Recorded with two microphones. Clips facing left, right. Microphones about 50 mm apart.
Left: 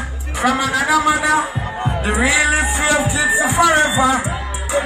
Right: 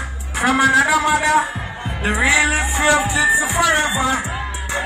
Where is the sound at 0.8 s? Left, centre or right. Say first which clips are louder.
Left 1 dB; centre.